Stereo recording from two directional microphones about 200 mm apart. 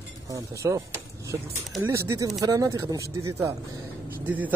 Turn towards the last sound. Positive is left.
turn(degrees=-10)  # may be behind; listen again after turning